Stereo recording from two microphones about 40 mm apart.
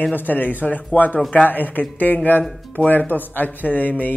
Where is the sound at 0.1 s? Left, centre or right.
Left.